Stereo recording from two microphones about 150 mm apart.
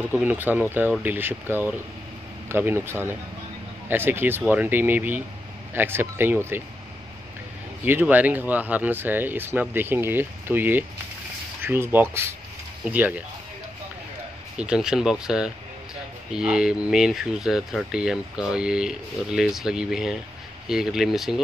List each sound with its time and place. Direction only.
0.1 s speech: 10° right (ahead or behind)
7.8 s speech: 10° right (ahead or behind)
14.6 s speech: 5° right (ahead or behind)